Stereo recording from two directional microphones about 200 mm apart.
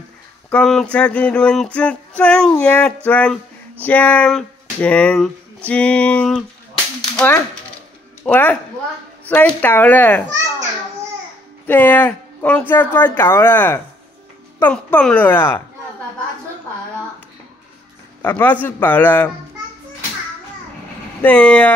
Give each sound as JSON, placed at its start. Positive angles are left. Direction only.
{"t": 0.5, "sound": "a sound", "side_deg": 5}
{"t": 3.1, "sound": "speech", "side_deg": 5}
{"t": 5.7, "sound": "a sound", "side_deg": 5}
{"t": 7.2, "sound": "speech", "side_deg": 10}
{"t": 11.6, "sound": "speech", "side_deg": 10}
{"t": 18.2, "sound": "speech", "side_deg": 10}
{"t": 21.2, "sound": "speech", "side_deg": 5}